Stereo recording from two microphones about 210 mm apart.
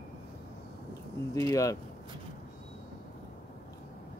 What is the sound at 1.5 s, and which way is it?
Speech, 15° left (ahead or behind).